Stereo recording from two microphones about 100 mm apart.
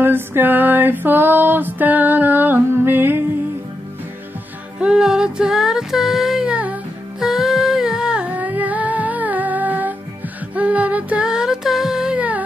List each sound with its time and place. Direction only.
0.0 s music: 20° right (ahead or behind)
4.7 s music: 10° right (ahead or behind)
7.2 s humming: 5° right (ahead or behind)
10.5 s a sound: 15° right (ahead or behind)